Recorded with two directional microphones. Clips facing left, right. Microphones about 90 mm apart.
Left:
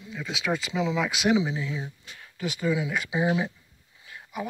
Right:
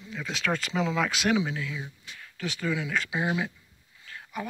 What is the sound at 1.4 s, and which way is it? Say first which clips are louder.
Speech: left 2 dB; 20° left (ahead or behind).